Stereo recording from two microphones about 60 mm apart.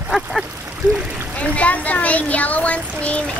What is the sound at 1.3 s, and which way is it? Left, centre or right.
Speech, left.